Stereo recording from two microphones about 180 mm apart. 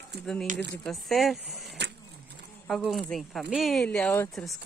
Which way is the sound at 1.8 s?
70° right (ahead or behind).